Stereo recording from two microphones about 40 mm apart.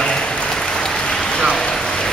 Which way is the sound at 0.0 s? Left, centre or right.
Centre.